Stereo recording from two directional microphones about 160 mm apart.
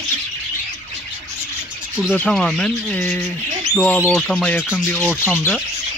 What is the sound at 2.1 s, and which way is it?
Speech, 5° left (ahead or behind).